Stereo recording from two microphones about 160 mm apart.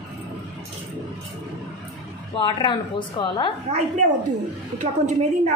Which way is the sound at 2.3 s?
30° left (ahead or behind).